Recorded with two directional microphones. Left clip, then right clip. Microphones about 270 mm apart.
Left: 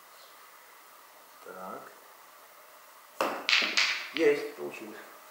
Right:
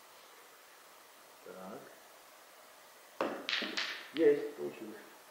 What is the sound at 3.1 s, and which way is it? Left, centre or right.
Tap, centre.